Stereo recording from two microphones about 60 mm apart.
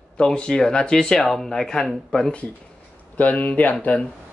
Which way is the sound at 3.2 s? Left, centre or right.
Left.